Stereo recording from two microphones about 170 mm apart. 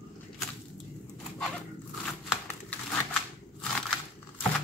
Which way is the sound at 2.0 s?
Centre (ahead or behind).